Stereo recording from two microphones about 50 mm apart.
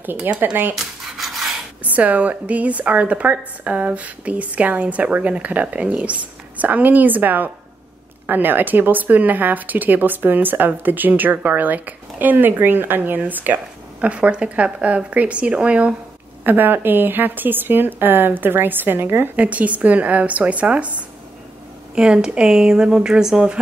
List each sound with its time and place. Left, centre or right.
0.3 s a woman's voice: right
0.7 s a sound: centre
1.9 s a woman's voice: right
14.0 s a woman's voice: right
16.4 s a woman's voice: right
19.3 s a woman's voice: right
21.9 s speech: centre